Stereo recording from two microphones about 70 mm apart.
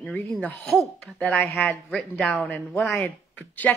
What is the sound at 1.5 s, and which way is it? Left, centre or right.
Speech, left.